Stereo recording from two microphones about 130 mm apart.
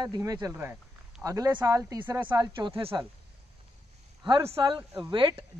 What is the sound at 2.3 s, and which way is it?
Speech, 35° right (ahead or behind).